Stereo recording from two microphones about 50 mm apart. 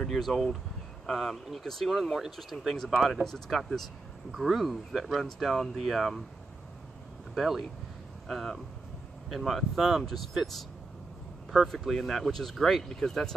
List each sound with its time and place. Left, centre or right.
0.1 s speech: centre
3.0 s speech: centre
7.3 s speech: centre
11.6 s speech: centre